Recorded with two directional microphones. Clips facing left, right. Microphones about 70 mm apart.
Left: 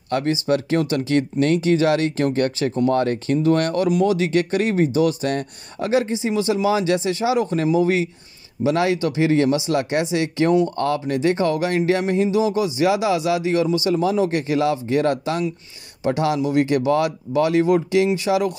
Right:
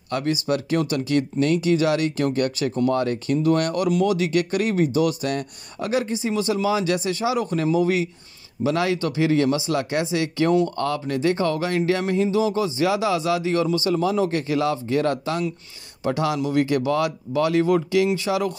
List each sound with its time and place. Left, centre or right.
0.1 s speech: left
12.5 s speech: centre